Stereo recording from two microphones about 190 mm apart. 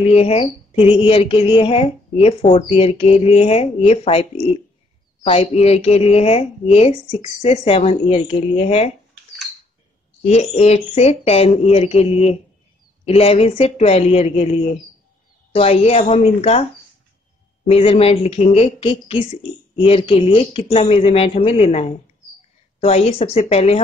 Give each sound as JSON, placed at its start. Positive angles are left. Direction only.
{"t": 0.0, "sound": "speech", "side_deg": 30}
{"t": 10.2, "sound": "speech", "side_deg": 35}
{"t": 17.6, "sound": "speech", "side_deg": 30}